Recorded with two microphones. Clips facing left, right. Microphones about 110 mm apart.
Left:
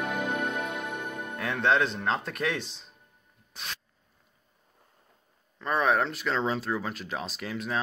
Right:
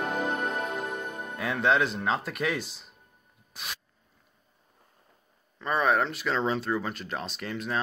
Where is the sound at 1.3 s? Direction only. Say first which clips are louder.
Even; 5° right (ahead or behind).